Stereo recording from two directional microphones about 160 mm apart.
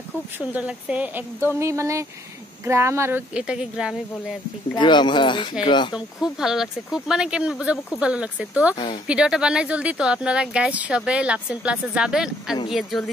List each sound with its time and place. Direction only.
0.4 s speech: 10° right (ahead or behind)
4.7 s speech: 30° left (ahead or behind)
5.9 s speech: 5° right (ahead or behind)
8.7 s speech: 30° left (ahead or behind)
9.0 s speech: 5° right (ahead or behind)